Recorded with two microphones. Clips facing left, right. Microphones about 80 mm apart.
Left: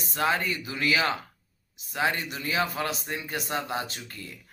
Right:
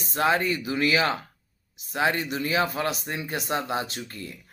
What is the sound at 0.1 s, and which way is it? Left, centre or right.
Speech, right.